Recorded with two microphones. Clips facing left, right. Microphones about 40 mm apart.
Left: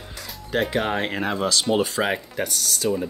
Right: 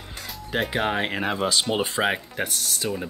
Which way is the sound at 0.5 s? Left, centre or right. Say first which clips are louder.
Left 2 dB; centre.